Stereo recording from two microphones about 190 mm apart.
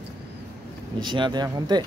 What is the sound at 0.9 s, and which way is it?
Speech, 25° right (ahead or behind).